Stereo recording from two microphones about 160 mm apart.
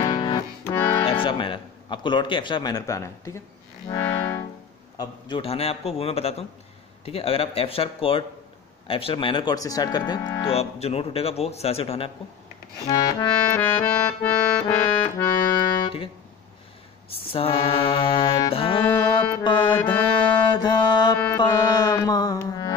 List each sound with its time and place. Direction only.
0.0 s music: 30° left (ahead or behind)
0.7 s music: 15° left (ahead or behind)
1.0 s speech: 30° left (ahead or behind)
3.9 s music: 15° left (ahead or behind)
4.9 s speech: 25° left (ahead or behind)
5.4 s a man's voice: 40° left (ahead or behind)
10.5 s a man's voice: 40° left (ahead or behind)
12.9 s speech: 25° left (ahead or behind)
13.6 s accordion: 10° left (ahead or behind)
17.2 s a man's voice: 35° left (ahead or behind)
18.5 s music: 35° left (ahead or behind)
19.4 s speech: 30° left (ahead or behind)
19.9 s music: 30° left (ahead or behind)